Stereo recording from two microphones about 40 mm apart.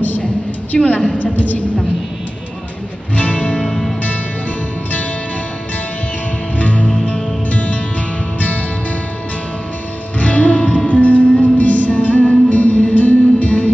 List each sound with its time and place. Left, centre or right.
0.7 s a woman's voice: left
1.1 s a woman's voice: left
3.2 s music: left
3.6 s music: centre
6.6 s music: left
10.1 s music: left